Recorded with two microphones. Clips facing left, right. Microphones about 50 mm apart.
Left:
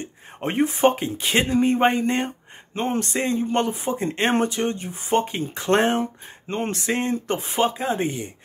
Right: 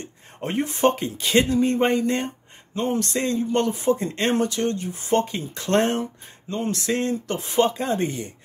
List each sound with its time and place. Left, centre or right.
0.0 s speech: left
7.5 s speech: centre